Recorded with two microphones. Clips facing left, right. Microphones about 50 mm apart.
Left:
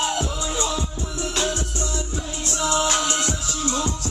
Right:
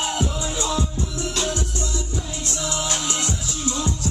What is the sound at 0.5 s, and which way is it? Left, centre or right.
Music, left.